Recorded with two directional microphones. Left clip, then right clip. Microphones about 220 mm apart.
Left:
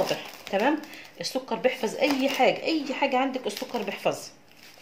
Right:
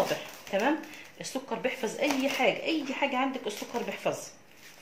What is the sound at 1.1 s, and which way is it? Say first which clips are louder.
Speech: left 5 dB; 45° left (ahead or behind).